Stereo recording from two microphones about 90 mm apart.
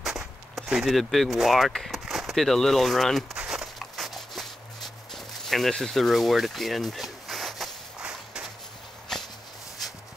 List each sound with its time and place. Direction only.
0.0 s speech: 5° right (ahead or behind)
3.3 s a sound: 5° right (ahead or behind)
9.1 s walk: 5° left (ahead or behind)